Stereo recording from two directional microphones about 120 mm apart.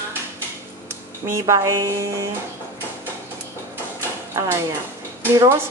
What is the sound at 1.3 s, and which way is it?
Speech, 25° right (ahead or behind).